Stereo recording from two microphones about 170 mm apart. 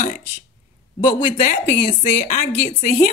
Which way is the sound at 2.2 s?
45° left (ahead or behind).